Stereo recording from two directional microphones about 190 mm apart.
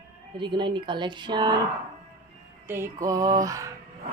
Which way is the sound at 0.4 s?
25° right (ahead or behind).